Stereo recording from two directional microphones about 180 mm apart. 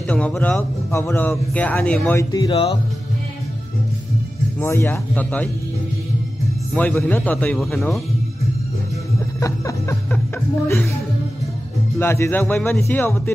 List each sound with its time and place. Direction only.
0.1 s speech: 5° left (ahead or behind)
2.3 s speech: 25° left (ahead or behind)
4.6 s speech: 10° left (ahead or behind)
6.7 s speech: 5° left (ahead or behind)
9.4 s music: 15° left (ahead or behind)
12.0 s speech: 15° left (ahead or behind)